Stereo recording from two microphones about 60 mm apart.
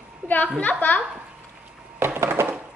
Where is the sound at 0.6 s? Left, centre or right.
Left.